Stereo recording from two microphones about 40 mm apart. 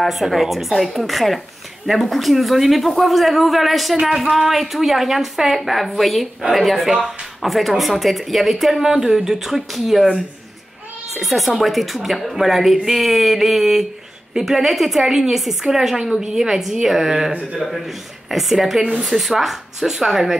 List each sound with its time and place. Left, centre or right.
0.0 s speech: centre
11.1 s speech: centre